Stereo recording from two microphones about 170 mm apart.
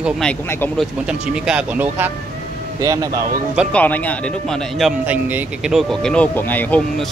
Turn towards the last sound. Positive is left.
turn(degrees=10)  # may be behind; listen again after turning